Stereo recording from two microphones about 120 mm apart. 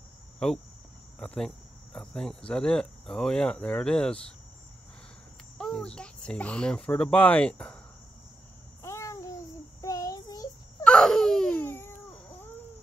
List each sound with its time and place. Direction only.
0.4 s cricket: 5° left (ahead or behind)
5.6 s cricket: 5° left (ahead or behind)
8.8 s babbling: 25° left (ahead or behind)
9.8 s child singing: 30° left (ahead or behind)
10.8 s baby cry: 5° left (ahead or behind)
11.6 s babbling: 20° left (ahead or behind)